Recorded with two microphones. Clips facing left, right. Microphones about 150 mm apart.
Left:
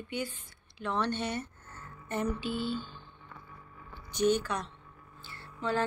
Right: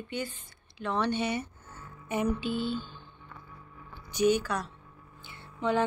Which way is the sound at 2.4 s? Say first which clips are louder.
Right 2 dB; centre (ahead or behind).